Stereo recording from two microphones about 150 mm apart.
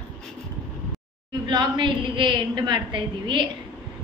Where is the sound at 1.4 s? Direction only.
30° right (ahead or behind).